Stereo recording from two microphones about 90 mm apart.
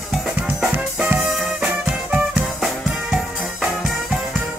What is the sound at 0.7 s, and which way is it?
Music, 20° right (ahead or behind).